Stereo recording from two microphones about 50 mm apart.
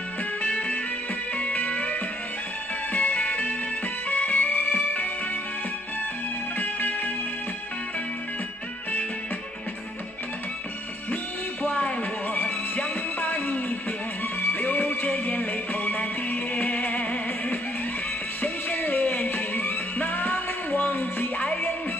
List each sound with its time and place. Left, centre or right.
0.4 s music: left
6.6 s music: left
11.6 s music: left